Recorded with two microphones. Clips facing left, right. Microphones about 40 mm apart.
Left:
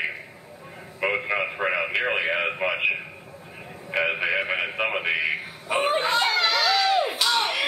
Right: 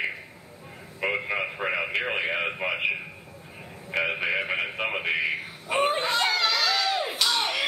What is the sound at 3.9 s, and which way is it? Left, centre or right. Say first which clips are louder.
A man's voice: left 2 dB; centre.